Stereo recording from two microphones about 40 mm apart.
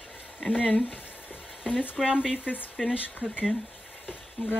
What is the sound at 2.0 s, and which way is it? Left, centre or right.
Speech, centre.